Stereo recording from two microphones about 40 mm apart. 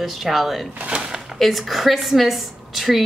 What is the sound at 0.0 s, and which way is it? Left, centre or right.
A woman's voice, centre.